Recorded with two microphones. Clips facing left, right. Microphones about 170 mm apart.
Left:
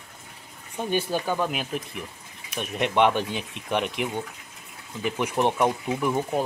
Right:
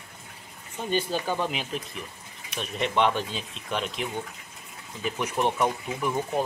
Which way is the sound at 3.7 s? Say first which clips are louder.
Left 4 dB; 15° left (ahead or behind).